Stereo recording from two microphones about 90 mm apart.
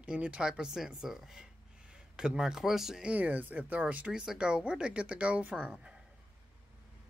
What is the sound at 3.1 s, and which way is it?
Speech, 20° right (ahead or behind).